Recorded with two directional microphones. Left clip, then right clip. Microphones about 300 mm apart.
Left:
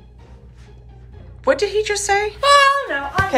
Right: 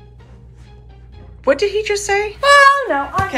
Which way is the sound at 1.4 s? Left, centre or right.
Centre.